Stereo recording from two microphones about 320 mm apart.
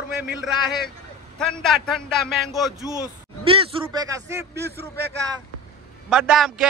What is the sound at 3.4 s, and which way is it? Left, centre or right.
A man's voice, centre.